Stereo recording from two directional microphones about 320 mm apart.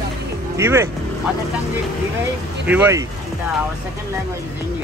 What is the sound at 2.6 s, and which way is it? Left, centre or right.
Speech, centre.